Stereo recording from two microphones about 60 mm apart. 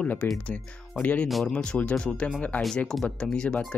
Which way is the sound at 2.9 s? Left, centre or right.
Centre.